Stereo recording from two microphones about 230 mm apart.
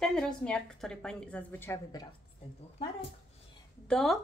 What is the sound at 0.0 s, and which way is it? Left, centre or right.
A woman's voice, centre.